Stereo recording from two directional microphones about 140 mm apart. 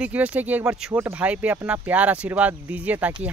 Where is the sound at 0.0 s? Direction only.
10° right (ahead or behind).